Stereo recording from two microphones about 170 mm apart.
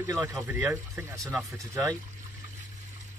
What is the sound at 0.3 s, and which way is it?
Speech, 10° right (ahead or behind).